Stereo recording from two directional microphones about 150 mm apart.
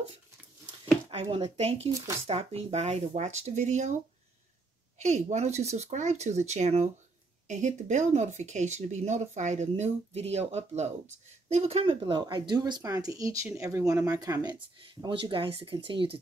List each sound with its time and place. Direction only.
1.1 s speech: 40° right (ahead or behind)
4.9 s speech: 50° right (ahead or behind)